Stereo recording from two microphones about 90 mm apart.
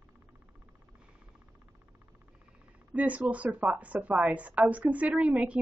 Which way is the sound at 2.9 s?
15° right (ahead or behind).